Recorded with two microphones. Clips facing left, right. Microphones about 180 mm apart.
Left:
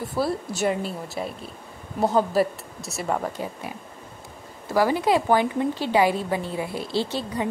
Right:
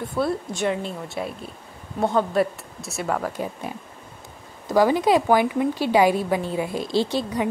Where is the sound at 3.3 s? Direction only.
20° right (ahead or behind).